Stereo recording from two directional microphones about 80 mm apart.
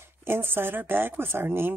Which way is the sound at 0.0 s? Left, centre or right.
Right.